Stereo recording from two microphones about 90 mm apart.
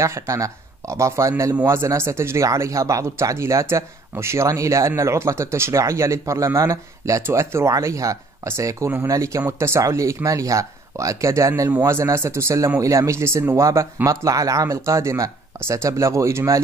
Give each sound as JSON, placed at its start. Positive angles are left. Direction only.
{"t": 0.0, "sound": "speech", "side_deg": -35}